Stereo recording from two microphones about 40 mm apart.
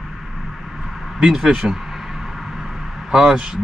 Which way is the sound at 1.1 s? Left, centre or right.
Centre.